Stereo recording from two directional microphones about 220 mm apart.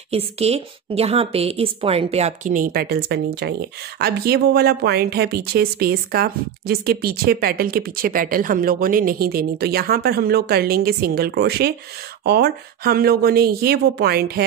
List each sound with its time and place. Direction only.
0.1 s a woman's voice: 30° right (ahead or behind); by 14.4 s 45° right (ahead or behind)